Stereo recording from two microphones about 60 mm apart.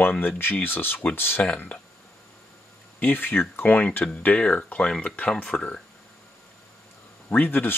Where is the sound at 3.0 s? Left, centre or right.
Left; by 5.8 s centre.